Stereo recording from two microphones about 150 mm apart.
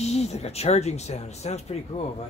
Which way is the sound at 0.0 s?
45° left (ahead or behind).